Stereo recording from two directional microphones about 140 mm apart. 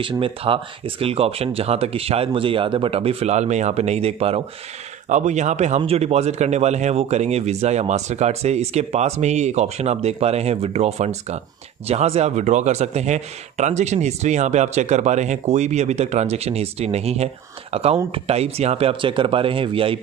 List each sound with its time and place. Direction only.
0.0 s speech: 40° right (ahead or behind)
5.1 s speech: 55° right (ahead or behind); by 20.0 s 40° right (ahead or behind)